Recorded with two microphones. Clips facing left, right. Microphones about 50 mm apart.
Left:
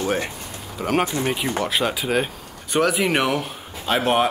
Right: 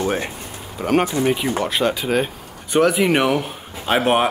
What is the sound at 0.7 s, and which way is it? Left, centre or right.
Speech, centre.